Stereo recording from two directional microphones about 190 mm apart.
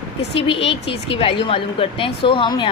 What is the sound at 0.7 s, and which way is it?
Speech, 30° left (ahead or behind).